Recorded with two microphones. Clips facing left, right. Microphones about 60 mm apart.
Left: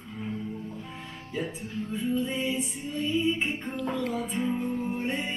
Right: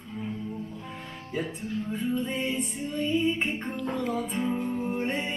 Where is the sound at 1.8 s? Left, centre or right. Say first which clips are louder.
Left 2 dB; centre.